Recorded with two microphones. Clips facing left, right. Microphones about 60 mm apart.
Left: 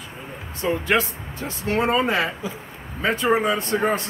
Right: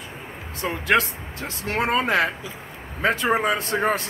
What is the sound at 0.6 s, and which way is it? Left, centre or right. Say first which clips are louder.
Speech: left 4 dB; right.